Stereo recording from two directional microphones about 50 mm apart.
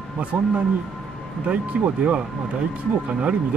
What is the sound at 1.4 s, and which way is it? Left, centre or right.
Speech, right.